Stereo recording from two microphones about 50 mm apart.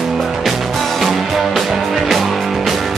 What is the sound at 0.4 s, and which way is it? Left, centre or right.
Music, centre.